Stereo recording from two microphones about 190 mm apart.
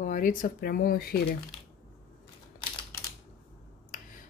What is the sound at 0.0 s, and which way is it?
A woman's voice, 45° left (ahead or behind).